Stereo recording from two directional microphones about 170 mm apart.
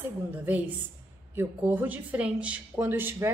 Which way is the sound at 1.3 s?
10° right (ahead or behind).